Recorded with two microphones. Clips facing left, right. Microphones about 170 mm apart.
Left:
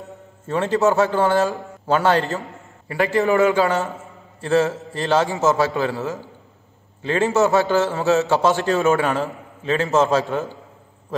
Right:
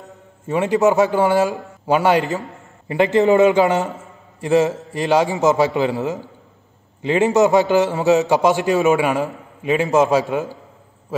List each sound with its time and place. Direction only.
0.5 s a man's voice: 15° right (ahead or behind)